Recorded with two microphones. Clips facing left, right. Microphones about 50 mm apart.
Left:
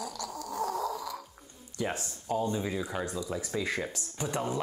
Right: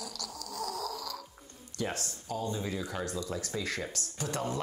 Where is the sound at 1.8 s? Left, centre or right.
Centre.